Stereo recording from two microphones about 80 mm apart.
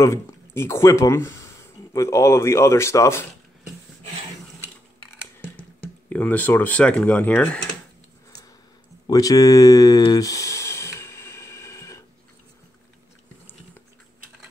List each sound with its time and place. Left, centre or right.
0.6 s speech: left
6.0 s speech: left
9.0 s a sound: left